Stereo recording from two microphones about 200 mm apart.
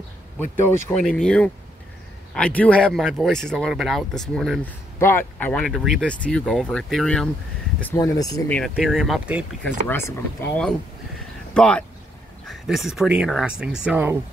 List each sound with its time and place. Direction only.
0.4 s speech: 10° left (ahead or behind)
7.8 s speech: 15° left (ahead or behind)
8.5 s speech: 5° left (ahead or behind)
9.8 s speech: 10° left (ahead or behind)
11.5 s speech: 5° left (ahead or behind)